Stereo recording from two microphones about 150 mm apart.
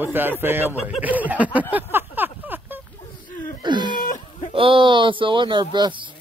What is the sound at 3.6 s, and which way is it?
Wail, 30° right (ahead or behind).